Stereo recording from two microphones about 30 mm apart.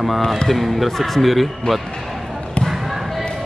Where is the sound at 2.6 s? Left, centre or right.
Centre.